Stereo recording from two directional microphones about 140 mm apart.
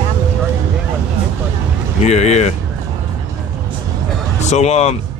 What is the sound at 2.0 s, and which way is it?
Speech, 50° left (ahead or behind).